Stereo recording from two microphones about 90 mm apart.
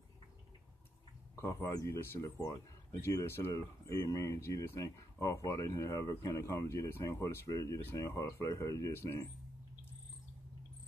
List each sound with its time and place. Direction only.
1.3 s speech: 35° left (ahead or behind)
3.5 s speech: 40° left (ahead or behind)